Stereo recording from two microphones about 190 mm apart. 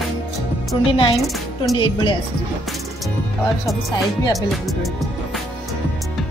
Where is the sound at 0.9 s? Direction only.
30° left (ahead or behind).